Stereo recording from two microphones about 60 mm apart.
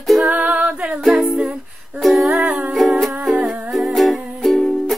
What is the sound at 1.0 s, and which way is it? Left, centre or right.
Music, centre.